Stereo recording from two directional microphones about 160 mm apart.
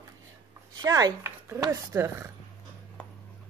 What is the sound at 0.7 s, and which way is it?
Speech, 25° right (ahead or behind).